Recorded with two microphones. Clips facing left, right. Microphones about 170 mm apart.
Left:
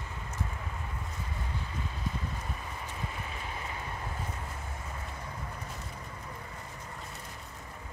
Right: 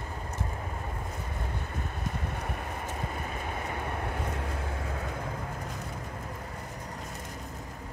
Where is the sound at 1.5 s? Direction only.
55° right (ahead or behind).